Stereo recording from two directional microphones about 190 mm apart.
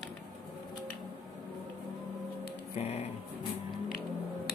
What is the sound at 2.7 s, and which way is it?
Speech, 35° left (ahead or behind).